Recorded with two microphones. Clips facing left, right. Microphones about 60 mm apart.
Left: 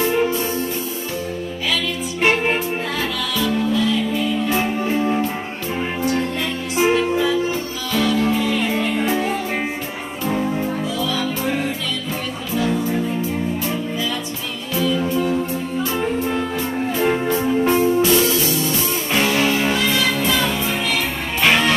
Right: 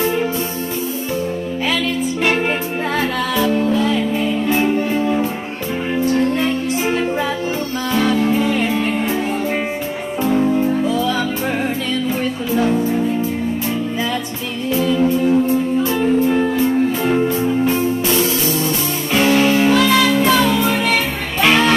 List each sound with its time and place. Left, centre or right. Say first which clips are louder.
3.0 s music: right 7 dB; right
7.9 s music: right 2 dB; right
10.9 s music: right 5 dB; right
14.8 s music: right 3 dB; right
16.3 s music: right 7 dB; right
17.0 s music: right 2 dB; left
18.3 s music: right 1 dB; right
19.7 s music: right 6 dB; right